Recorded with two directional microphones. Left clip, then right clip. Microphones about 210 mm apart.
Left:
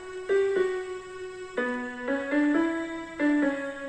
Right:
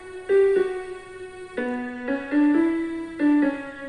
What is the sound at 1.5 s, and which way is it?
Music, 20° right (ahead or behind).